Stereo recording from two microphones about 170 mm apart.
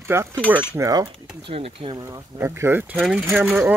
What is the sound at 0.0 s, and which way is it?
Speech, 15° right (ahead or behind).